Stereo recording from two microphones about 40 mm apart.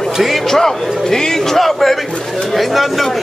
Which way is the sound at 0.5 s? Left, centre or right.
Centre.